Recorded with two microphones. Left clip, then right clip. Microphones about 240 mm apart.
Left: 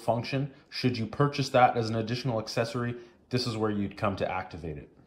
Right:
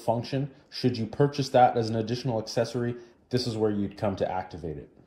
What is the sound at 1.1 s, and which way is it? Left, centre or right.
Speech, centre.